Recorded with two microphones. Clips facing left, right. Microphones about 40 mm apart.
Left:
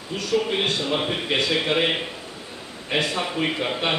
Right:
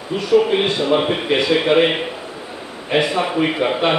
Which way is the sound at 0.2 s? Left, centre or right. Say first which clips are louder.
Right 8 dB; centre.